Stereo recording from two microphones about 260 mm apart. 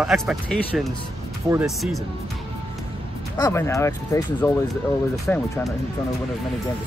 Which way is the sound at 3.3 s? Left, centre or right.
Centre.